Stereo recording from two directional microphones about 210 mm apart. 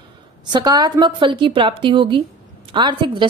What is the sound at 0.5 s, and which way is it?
A woman's voice, 20° right (ahead or behind).